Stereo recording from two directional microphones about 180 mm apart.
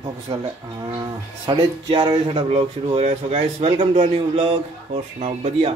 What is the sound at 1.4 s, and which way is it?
Speech, 25° right (ahead or behind).